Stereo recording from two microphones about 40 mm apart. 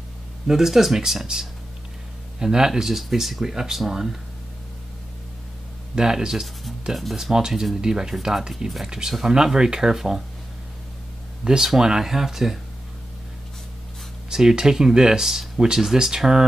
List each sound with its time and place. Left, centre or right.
0.5 s speech: centre
5.9 s speech: centre
6.9 s speech: centre
7.2 s speech: centre
11.4 s speech: centre
14.5 s speech: centre